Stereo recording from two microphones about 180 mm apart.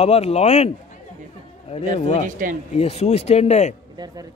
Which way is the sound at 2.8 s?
35° left (ahead or behind).